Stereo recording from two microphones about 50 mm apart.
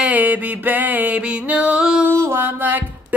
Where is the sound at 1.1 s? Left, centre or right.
Right.